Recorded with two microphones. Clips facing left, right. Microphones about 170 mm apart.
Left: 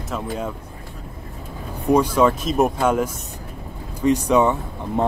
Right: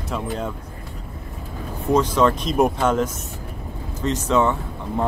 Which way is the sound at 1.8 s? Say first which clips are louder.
Left 2 dB; 10° left (ahead or behind).